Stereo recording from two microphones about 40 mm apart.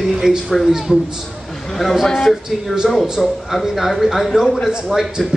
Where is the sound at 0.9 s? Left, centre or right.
Centre.